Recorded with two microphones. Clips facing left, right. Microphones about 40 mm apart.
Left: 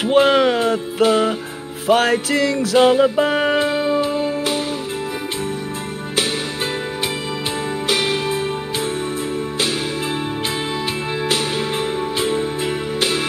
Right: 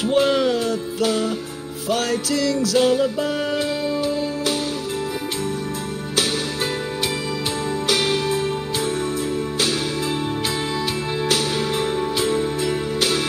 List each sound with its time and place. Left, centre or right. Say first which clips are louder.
0.0 s music: left 4 dB; left
7.8 s music: left 1 dB; centre
11.2 s music: even; centre